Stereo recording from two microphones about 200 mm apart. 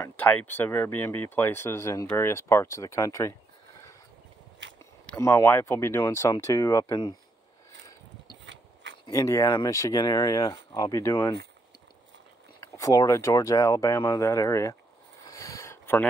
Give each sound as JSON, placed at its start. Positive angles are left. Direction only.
{"t": 0.0, "sound": "speech", "side_deg": 10}
{"t": 5.1, "sound": "speech", "side_deg": 15}
{"t": 9.0, "sound": "speech", "side_deg": 15}
{"t": 12.5, "sound": "speech", "side_deg": 15}
{"t": 15.2, "sound": "a sound", "side_deg": 15}